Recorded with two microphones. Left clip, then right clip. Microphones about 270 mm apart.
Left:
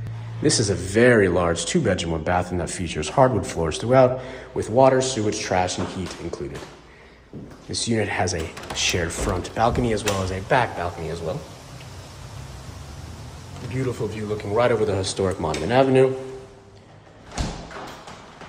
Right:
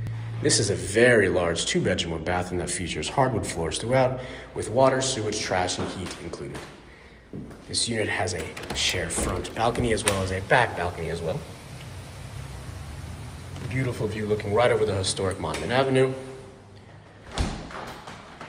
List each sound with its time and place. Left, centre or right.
0.4 s speech: left
7.7 s speech: left
13.7 s speech: centre